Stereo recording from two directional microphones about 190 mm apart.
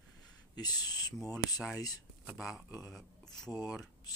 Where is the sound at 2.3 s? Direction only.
Centre (ahead or behind).